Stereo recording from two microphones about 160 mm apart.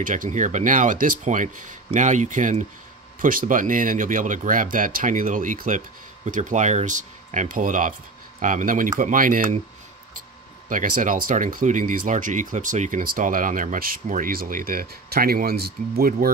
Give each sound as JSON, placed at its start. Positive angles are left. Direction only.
{"t": 0.0, "sound": "speech", "side_deg": -55}
{"t": 10.7, "sound": "speech", "side_deg": -55}